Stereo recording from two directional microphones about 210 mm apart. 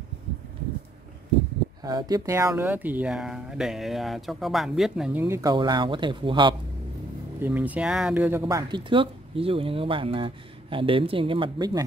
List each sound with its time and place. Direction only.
1.8 s speech: 20° right (ahead or behind); by 5.2 s centre (ahead or behind)
5.2 s speech: 15° right (ahead or behind)
7.3 s speech: 10° right (ahead or behind)